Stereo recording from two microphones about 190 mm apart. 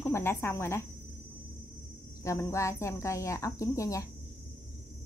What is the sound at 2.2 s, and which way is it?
Speech, 15° left (ahead or behind).